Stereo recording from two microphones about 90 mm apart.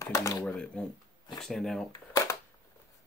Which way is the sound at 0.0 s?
40° left (ahead or behind).